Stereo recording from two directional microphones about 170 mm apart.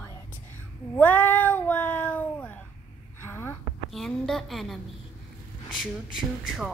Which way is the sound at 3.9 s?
Centre (ahead or behind).